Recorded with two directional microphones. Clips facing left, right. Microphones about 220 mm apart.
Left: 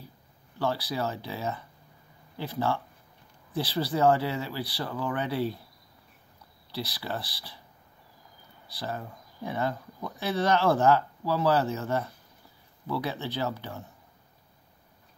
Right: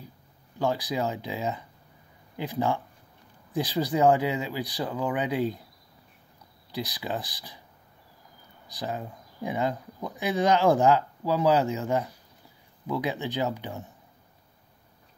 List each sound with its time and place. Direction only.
0.6 s speech: 15° right (ahead or behind)
6.7 s speech: 15° right (ahead or behind)
8.6 s speech: 15° right (ahead or behind)